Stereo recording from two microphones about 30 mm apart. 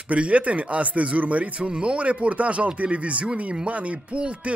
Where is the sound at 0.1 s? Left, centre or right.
Right.